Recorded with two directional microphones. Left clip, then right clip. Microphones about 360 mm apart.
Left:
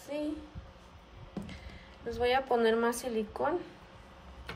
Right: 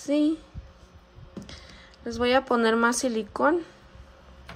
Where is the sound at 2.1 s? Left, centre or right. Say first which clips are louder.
Right 6 dB; centre.